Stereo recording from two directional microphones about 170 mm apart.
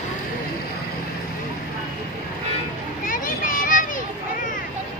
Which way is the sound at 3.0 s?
55° left (ahead or behind).